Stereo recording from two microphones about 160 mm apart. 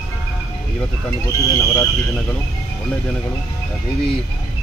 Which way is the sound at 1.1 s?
20° left (ahead or behind).